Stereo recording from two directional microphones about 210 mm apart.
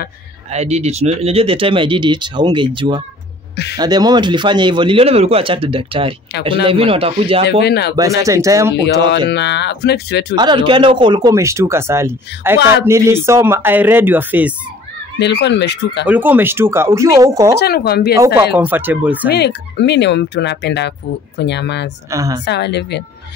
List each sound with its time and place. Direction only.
0.5 s speech: 30° right (ahead or behind)
7.6 s speech: 50° left (ahead or behind)
7.9 s speech: 15° right (ahead or behind)
9.3 s speech: 55° left (ahead or behind)
10.3 s speech: 20° right (ahead or behind)
15.1 s speech: 55° left (ahead or behind)
16.1 s speech: 10° right (ahead or behind)
17.6 s speech: 50° left (ahead or behind)
18.1 s speech: 10° right (ahead or behind)
19.2 s speech: 50° left (ahead or behind)
22.1 s speech: 15° right (ahead or behind)
22.4 s speech: 55° left (ahead or behind)